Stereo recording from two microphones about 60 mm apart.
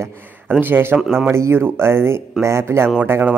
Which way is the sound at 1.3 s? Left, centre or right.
Right.